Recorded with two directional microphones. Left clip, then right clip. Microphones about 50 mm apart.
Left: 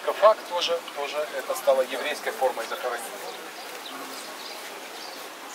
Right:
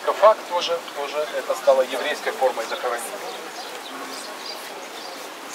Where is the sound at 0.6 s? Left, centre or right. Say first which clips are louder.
Right 3 dB; left.